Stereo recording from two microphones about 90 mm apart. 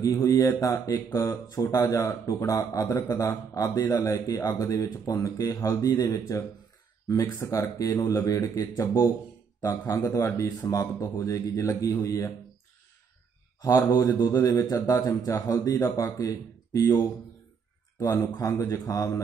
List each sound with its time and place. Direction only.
0.3 s speech: 35° left (ahead or behind)
1.5 s speech: 45° left (ahead or behind)
7.2 s speech: 35° left (ahead or behind)
13.6 s a man's voice: 45° left (ahead or behind)
15.8 s speech: 25° left (ahead or behind)
18.4 s speech: 35° left (ahead or behind)